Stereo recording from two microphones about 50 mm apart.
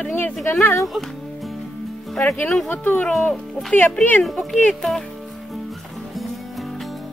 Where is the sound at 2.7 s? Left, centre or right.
Left.